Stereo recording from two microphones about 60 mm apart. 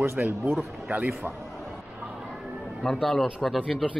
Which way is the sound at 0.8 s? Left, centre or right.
Right.